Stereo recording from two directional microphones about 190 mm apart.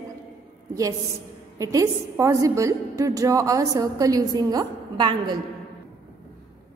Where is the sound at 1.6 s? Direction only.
15° right (ahead or behind).